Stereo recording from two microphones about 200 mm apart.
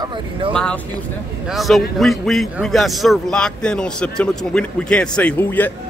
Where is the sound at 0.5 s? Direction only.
5° left (ahead or behind).